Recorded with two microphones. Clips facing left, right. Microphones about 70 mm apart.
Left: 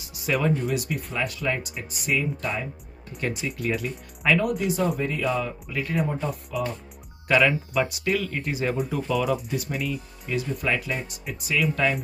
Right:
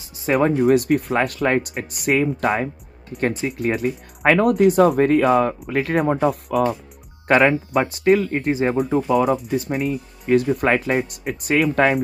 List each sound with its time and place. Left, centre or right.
0.0 s music: right
0.7 s speech: right
3.2 s speech: right
7.2 s speech: right